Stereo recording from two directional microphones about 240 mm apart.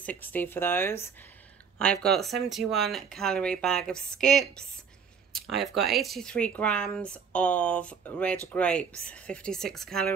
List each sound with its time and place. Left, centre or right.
0.0 s speech: centre